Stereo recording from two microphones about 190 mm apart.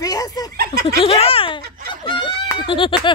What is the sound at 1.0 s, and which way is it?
A woman's voice, 30° left (ahead or behind).